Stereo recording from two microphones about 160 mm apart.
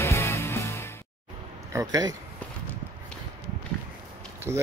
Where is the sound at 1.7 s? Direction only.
20° right (ahead or behind).